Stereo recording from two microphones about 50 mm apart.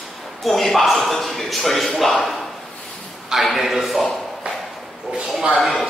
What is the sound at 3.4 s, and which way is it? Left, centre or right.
Speech, centre.